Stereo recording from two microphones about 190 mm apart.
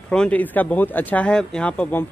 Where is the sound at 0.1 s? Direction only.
5° left (ahead or behind).